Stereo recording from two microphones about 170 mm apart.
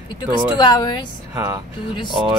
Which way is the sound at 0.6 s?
25° left (ahead or behind).